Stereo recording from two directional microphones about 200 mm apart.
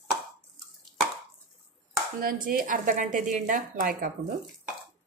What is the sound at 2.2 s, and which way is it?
A woman's voice, 45° right (ahead or behind).